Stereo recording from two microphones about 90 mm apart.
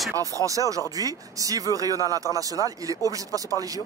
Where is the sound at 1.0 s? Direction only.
40° right (ahead or behind).